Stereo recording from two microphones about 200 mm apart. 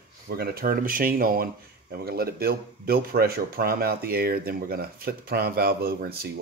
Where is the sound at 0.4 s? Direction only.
50° right (ahead or behind).